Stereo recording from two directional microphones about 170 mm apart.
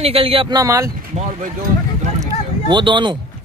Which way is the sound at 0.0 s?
35° right (ahead or behind).